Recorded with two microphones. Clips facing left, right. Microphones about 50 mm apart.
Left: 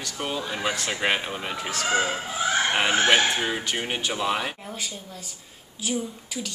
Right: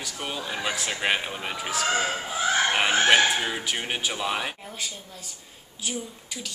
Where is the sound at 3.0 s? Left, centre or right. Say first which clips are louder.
Even; centre.